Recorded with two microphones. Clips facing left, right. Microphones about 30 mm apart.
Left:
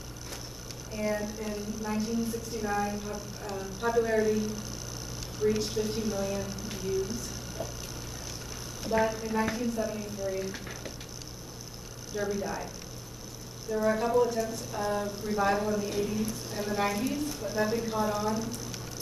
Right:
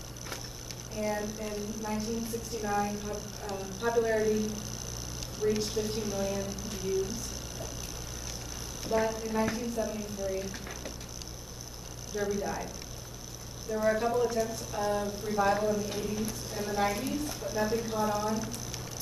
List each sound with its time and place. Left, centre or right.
0.9 s a woman's voice: centre
8.8 s a woman's voice: centre
12.2 s a woman's voice: centre
13.7 s a woman's voice: centre